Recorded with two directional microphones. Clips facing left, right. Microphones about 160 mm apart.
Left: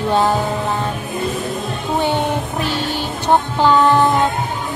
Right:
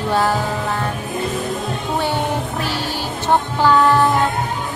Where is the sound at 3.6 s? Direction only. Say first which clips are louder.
Even; 20° left (ahead or behind).